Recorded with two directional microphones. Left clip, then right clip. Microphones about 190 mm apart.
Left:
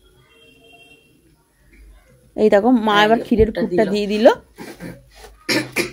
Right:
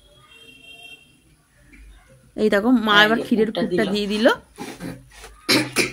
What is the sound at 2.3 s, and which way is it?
Speech, 10° left (ahead or behind).